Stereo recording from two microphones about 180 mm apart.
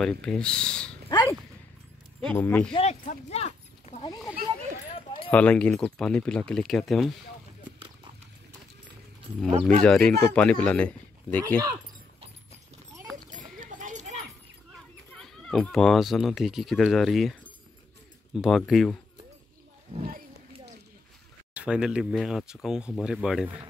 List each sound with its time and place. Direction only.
0.0 s speech: 5° left (ahead or behind)
1.0 s dog: 20° left (ahead or behind)
2.2 s speech: 10° left (ahead or behind)
2.7 s speech: 35° left (ahead or behind)
5.3 s speech: 5° left (ahead or behind)
9.5 s speech: 35° right (ahead or behind)
9.8 s speech: 5° left (ahead or behind)
13.3 s clip-clop: 45° right (ahead or behind)
15.1 s speech: 5° left (ahead or behind)
21.5 s speech: 5° right (ahead or behind)